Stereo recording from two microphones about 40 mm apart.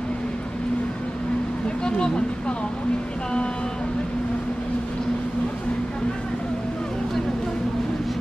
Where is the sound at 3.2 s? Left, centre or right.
Left.